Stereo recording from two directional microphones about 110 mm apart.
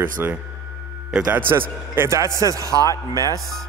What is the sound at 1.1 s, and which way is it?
Speech, 5° right (ahead or behind).